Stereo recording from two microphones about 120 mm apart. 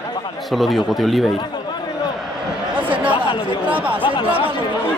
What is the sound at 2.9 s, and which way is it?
Chatter, 10° right (ahead or behind).